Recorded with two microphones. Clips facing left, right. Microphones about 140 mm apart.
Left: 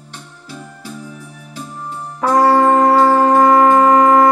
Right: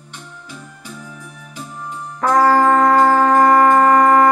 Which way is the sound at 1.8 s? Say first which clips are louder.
Left 1 dB; 35° left (ahead or behind).